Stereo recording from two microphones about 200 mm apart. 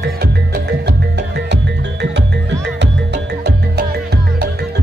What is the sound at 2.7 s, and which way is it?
Music, 60° right (ahead or behind).